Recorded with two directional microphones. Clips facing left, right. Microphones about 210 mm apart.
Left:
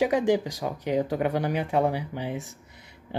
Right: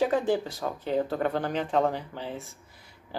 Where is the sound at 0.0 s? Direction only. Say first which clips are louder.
Left 2 dB; 15° left (ahead or behind).